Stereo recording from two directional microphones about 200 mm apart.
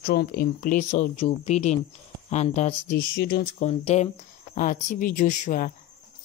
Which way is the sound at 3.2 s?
50° left (ahead or behind).